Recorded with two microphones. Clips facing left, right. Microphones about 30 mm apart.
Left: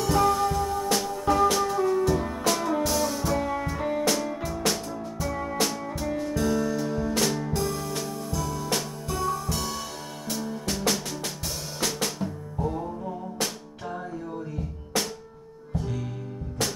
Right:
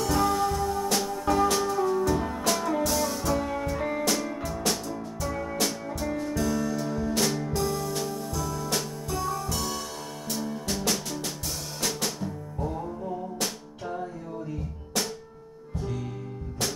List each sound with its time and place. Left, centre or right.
0.0 s music: centre
1.7 s music: centre
2.0 s music: centre
5.4 s music: centre